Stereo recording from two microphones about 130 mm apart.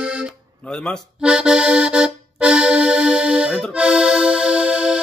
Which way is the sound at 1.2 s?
5° right (ahead or behind).